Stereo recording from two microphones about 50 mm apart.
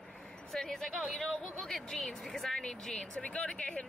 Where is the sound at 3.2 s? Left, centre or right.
Left.